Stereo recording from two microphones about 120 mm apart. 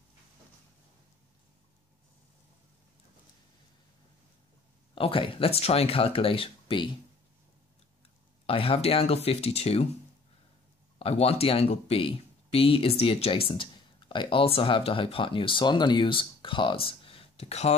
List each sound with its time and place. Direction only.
4.9 s speech: 45° left (ahead or behind)
8.5 s speech: 50° left (ahead or behind)
11.0 s speech: 55° left (ahead or behind)